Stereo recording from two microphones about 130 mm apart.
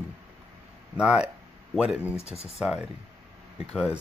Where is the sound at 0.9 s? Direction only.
5° right (ahead or behind).